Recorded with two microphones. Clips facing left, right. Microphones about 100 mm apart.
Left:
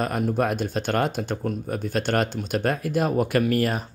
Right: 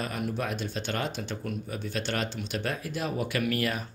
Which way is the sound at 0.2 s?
50° left (ahead or behind).